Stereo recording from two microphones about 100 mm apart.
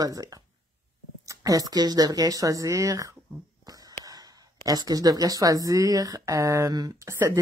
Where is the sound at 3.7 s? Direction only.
40° right (ahead or behind).